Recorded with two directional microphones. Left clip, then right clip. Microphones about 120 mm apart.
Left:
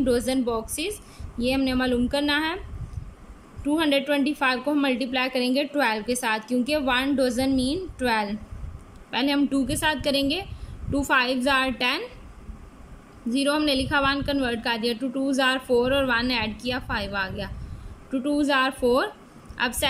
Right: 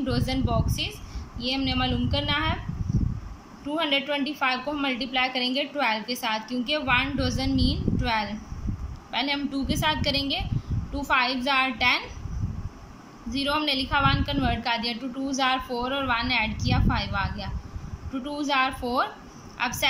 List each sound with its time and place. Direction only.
0.0 s a woman's voice: 45° left (ahead or behind)
3.6 s a woman's voice: 45° left (ahead or behind)
13.3 s a woman's voice: 45° left (ahead or behind)